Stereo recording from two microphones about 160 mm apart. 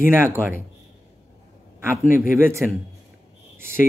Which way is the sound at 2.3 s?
15° right (ahead or behind).